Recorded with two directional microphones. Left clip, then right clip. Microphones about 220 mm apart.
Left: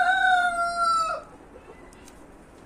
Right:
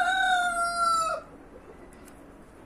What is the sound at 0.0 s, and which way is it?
Chicken, 45° right (ahead or behind).